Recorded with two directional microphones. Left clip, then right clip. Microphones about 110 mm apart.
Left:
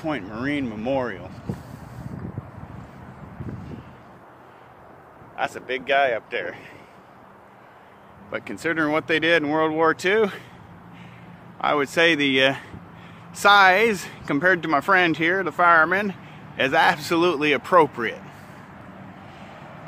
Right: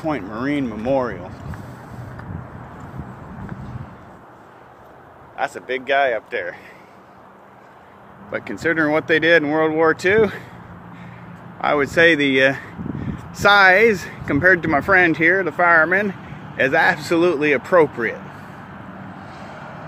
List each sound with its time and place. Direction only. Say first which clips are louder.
0.0 s speech: right 4 dB; 60° left (ahead or behind)
5.3 s speech: right 3 dB; 45° left (ahead or behind)
8.3 s speech: right 5 dB; 25° left (ahead or behind)
9.4 s speech: right 3 dB; 35° left (ahead or behind)
11.6 s speech: right 4 dB; 30° left (ahead or behind); by 18.5 s 60° left (ahead or behind)